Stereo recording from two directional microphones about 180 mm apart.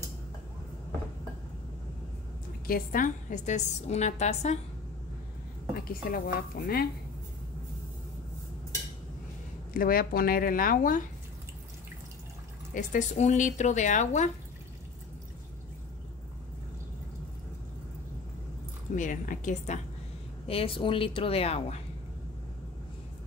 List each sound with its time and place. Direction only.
2.6 s a woman's voice: 55° left (ahead or behind)
5.9 s a woman's voice: 55° left (ahead or behind)
9.8 s speech: 55° left (ahead or behind)
12.7 s a woman's voice: 45° left (ahead or behind)
18.9 s speech: 45° left (ahead or behind)
20.4 s a woman's voice: 30° left (ahead or behind)